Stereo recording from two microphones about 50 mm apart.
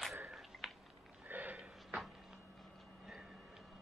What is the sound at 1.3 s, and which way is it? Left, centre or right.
Sniff, right.